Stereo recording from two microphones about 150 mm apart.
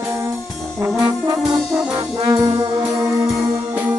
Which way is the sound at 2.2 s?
25° right (ahead or behind).